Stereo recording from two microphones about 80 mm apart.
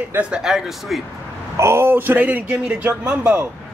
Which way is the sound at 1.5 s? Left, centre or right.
Right.